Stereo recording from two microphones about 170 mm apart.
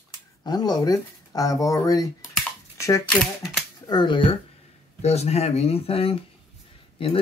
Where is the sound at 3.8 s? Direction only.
25° left (ahead or behind).